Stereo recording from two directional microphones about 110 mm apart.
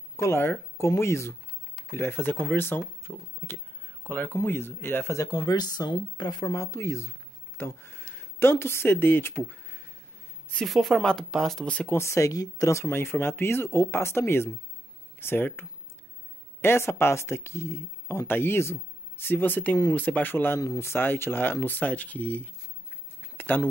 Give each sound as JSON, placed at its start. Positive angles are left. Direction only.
{"t": 0.1, "sound": "speech", "side_deg": 25}
{"t": 6.4, "sound": "speech", "side_deg": 30}
{"t": 9.5, "sound": "a sound", "side_deg": 15}
{"t": 10.5, "sound": "speech", "side_deg": 0}
{"t": 11.9, "sound": "speech", "side_deg": 25}
{"t": 16.6, "sound": "speech", "side_deg": 20}
{"t": 23.3, "sound": "a sound", "side_deg": 15}